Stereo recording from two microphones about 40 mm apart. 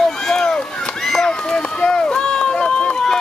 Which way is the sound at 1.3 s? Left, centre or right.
Left.